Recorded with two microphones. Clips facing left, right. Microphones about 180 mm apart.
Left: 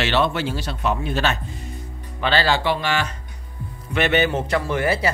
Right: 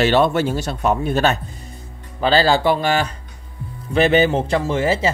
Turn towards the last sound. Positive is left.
turn(degrees=-25)  # may be behind; listen again after turning